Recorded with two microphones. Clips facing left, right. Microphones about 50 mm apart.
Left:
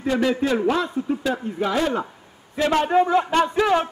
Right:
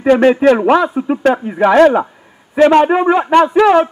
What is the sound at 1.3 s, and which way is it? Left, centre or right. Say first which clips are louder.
A man's voice: right 14 dB; right.